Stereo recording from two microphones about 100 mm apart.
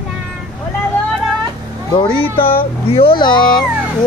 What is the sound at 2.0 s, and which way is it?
Speech, 65° left (ahead or behind).